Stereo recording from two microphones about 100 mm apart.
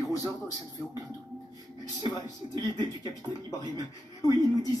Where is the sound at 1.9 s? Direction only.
40° left (ahead or behind).